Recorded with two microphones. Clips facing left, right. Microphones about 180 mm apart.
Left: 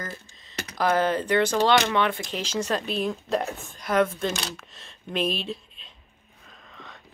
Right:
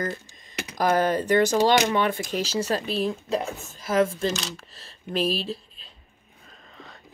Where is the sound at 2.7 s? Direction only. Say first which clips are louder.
Left 1 dB; 5° right (ahead or behind).